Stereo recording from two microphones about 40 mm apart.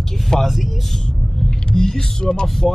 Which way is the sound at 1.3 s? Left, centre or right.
Centre.